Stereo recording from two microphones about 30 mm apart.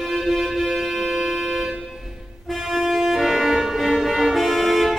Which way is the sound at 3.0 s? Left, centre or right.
Centre.